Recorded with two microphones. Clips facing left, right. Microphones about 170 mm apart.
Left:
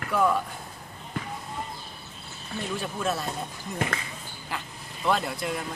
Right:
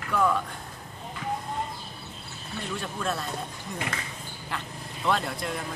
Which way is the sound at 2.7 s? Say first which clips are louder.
Left 2 dB; 5° left (ahead or behind).